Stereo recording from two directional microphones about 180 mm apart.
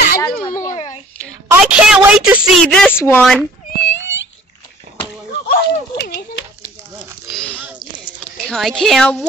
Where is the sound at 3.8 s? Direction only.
90° left.